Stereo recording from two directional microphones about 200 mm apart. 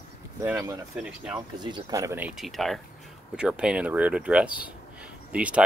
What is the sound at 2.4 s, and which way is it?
Speech, centre (ahead or behind).